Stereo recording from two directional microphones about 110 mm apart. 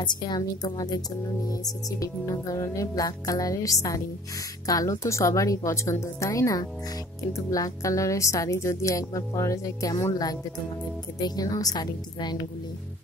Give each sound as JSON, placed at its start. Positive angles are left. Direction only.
{"t": 0.0, "sound": "music", "side_deg": 40}
{"t": 4.6, "sound": "speech", "side_deg": 30}
{"t": 11.1, "sound": "music", "side_deg": 35}